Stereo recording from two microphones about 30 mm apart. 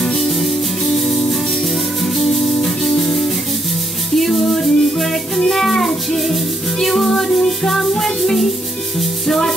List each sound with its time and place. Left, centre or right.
0.0 s music: centre
0.3 s music: centre
2.3 s music: centre